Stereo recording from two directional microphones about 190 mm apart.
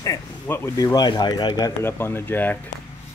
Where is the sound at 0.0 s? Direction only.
15° left (ahead or behind).